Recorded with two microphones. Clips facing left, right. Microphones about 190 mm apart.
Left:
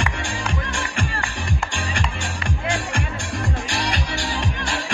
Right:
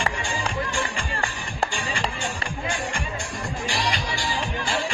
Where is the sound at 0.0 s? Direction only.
75° left (ahead or behind).